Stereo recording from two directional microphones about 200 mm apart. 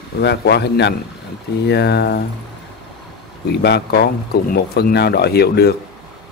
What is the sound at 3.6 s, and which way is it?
Speech, 55° left (ahead or behind).